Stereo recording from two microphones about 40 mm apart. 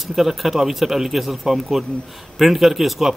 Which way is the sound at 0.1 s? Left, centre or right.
Centre.